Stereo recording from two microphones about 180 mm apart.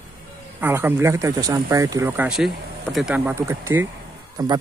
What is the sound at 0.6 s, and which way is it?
Speech, 10° right (ahead or behind).